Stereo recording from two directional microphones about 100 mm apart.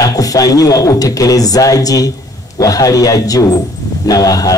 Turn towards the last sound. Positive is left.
turn(degrees=35)  # may be behind; listen again after turning